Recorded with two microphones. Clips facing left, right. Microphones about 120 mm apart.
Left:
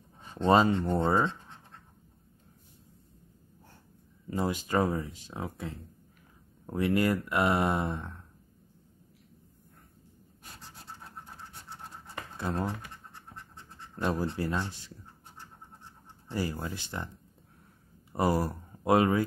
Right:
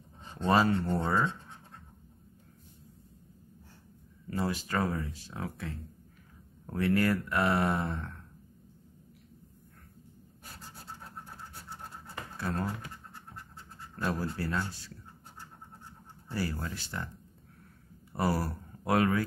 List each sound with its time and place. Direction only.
0.2 s speech: 15° left (ahead or behind)
4.3 s speech: 20° left (ahead or behind)
12.4 s scratch: 25° left (ahead or behind)
14.2 s speech: 20° left (ahead or behind)
16.3 s speech: 20° left (ahead or behind)
18.1 s speech: 20° left (ahead or behind)